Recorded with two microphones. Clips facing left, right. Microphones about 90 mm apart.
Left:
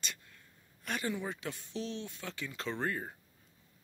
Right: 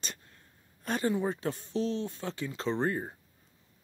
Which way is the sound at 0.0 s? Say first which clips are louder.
Right 1 dB; 35° right (ahead or behind).